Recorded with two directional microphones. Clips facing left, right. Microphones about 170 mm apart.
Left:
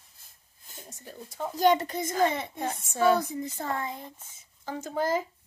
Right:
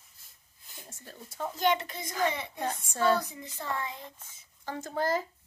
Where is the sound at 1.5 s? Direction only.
40° left (ahead or behind).